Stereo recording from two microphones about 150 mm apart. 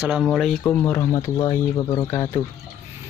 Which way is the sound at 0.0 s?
Centre (ahead or behind).